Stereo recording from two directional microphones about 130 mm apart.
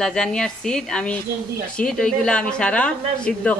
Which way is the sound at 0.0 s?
5° left (ahead or behind).